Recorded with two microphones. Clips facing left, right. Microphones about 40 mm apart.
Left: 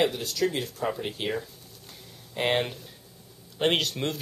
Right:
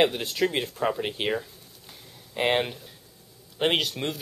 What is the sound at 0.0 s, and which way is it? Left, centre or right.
Speech, right.